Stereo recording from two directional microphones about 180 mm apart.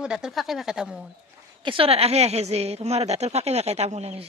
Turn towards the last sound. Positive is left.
turn(degrees=-35)  # may be behind; listen again after turning